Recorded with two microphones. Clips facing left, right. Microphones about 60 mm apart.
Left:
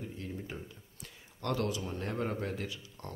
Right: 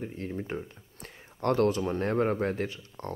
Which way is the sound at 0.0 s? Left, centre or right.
Right.